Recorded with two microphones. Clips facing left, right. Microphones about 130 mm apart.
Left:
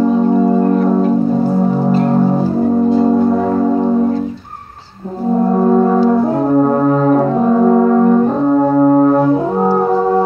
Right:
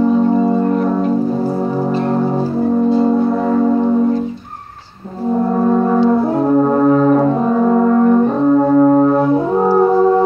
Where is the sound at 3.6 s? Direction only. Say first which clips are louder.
Even; 10° left (ahead or behind).